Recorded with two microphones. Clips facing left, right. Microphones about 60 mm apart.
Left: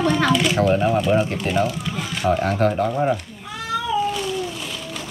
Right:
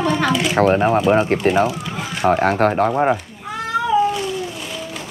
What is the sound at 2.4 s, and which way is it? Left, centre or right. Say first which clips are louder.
Speech: right 4 dB; right.